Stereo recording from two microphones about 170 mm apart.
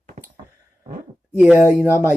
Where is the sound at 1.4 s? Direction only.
15° right (ahead or behind).